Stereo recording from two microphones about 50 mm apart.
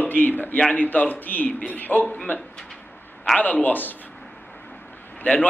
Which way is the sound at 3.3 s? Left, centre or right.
Left.